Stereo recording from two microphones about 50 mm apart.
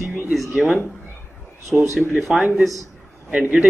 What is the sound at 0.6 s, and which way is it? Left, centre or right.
Speech, centre.